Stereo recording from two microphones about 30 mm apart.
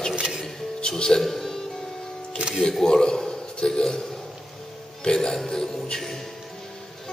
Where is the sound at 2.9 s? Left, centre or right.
Left.